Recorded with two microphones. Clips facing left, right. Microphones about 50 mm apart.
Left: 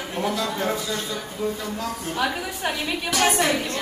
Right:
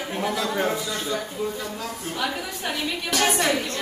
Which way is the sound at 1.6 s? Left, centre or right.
Centre.